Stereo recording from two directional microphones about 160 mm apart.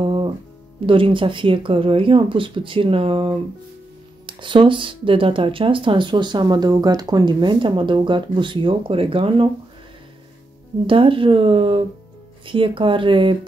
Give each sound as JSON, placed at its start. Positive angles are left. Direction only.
{"t": 0.0, "sound": "music", "side_deg": -30}
{"t": 0.8, "sound": "speech", "side_deg": -35}
{"t": 10.9, "sound": "speech", "side_deg": -35}